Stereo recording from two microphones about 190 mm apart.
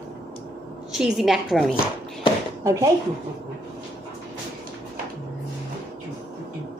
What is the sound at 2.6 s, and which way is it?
Speech, 15° right (ahead or behind).